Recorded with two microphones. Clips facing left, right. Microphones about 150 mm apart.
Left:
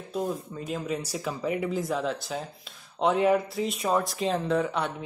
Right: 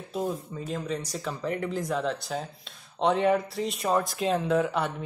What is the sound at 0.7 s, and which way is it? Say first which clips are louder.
Speech: left 1 dB; 5° left (ahead or behind).